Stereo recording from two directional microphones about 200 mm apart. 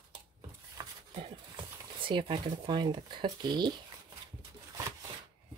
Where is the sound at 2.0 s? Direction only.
25° right (ahead or behind).